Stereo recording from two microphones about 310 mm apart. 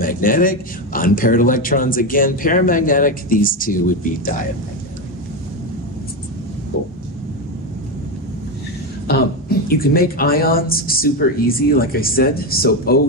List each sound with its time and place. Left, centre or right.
0.0 s speech: left
9.0 s speech: left